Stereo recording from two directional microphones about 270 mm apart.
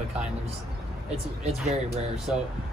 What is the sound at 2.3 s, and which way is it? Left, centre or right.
Speech, centre.